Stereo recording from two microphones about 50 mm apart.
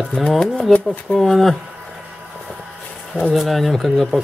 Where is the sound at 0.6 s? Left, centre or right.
Left.